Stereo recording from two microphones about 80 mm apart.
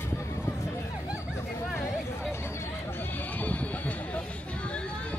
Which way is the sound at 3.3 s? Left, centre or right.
Centre.